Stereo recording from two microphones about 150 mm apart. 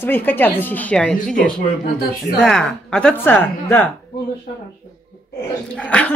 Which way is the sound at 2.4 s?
5° left (ahead or behind).